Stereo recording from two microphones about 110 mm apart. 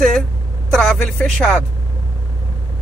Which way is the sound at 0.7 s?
5° left (ahead or behind).